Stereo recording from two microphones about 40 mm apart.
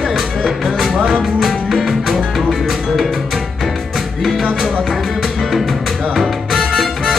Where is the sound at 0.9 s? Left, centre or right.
Right.